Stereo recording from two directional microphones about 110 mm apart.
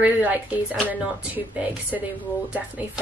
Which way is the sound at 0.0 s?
15° right (ahead or behind).